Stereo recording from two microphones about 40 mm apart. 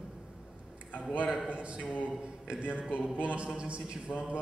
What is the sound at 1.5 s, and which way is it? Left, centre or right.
Speech, right.